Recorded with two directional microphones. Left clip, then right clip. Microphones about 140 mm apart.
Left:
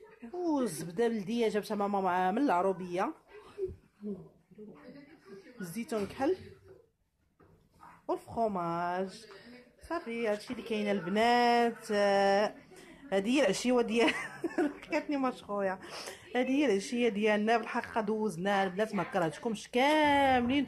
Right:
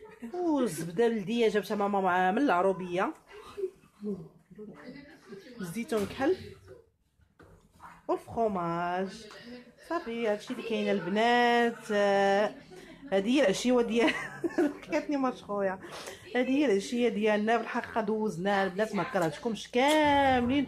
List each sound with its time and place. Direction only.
0.5 s speech: 15° left (ahead or behind)
5.7 s speech: 10° left (ahead or behind)
8.1 s speech: 20° left (ahead or behind)